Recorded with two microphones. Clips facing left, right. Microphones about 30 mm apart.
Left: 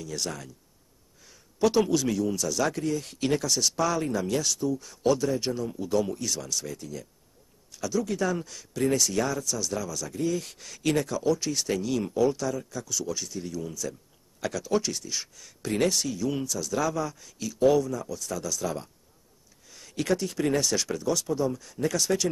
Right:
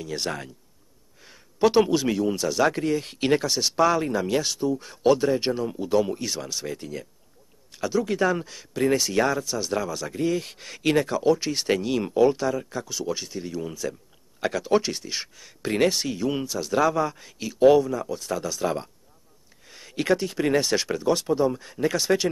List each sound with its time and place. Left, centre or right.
0.0 s speech: right